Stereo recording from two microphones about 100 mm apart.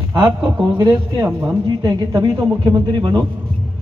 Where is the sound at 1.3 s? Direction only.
15° right (ahead or behind).